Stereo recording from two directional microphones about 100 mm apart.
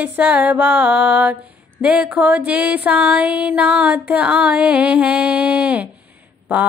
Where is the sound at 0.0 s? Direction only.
15° right (ahead or behind).